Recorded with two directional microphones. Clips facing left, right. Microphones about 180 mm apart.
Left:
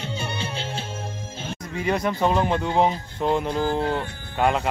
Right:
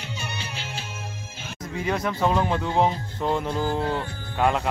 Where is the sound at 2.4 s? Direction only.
15° left (ahead or behind).